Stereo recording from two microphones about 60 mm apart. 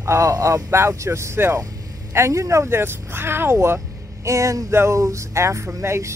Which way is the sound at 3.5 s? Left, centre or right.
Right.